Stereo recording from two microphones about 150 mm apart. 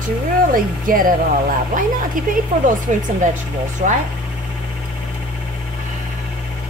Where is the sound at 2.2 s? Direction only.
60° right (ahead or behind).